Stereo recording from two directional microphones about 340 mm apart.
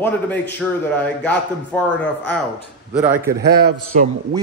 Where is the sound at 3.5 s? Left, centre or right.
Right.